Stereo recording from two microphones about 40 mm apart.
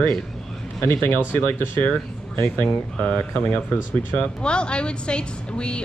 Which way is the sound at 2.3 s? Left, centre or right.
Left.